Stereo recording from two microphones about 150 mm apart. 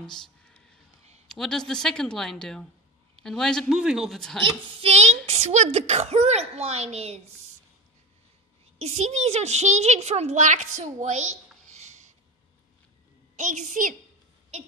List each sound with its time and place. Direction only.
0.0 s a sound: 5° left (ahead or behind)
1.2 s a woman's voice: 5° left (ahead or behind)
4.8 s a child's voice: 45° right (ahead or behind)
8.7 s a child's voice: 45° right (ahead or behind)
13.4 s a child's voice: 55° right (ahead or behind)